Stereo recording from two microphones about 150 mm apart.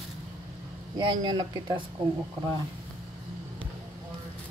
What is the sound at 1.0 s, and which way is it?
Speech, 30° right (ahead or behind).